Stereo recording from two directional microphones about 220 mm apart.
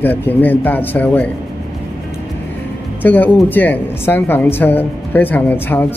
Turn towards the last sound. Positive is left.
turn(degrees=10)  # may be behind; listen again after turning